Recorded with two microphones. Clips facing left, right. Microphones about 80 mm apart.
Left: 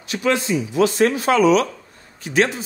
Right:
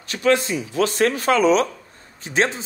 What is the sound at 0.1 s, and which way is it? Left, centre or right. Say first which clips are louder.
A man's voice: right 1 dB; right.